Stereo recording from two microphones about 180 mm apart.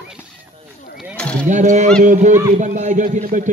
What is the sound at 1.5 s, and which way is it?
A man's voice, 45° right (ahead or behind).